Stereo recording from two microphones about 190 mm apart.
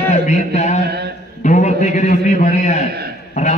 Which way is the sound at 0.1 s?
40° left (ahead or behind).